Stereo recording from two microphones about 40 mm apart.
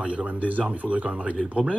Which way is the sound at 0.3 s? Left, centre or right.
Right.